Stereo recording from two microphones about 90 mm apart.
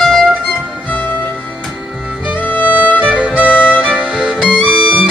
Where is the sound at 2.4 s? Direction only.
20° left (ahead or behind).